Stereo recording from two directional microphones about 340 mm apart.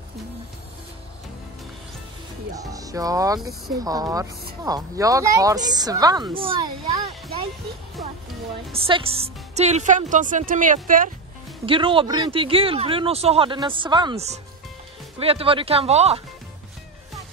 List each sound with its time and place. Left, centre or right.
2.5 s speech: centre
8.7 s a woman's voice: centre